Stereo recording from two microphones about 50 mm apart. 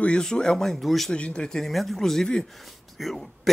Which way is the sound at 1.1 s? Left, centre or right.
Centre.